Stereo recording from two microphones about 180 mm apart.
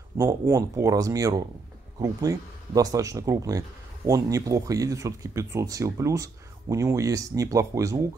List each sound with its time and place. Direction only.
0.2 s speech: 20° right (ahead or behind)